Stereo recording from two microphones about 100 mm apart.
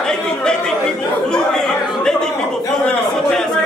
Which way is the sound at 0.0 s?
5° left (ahead or behind).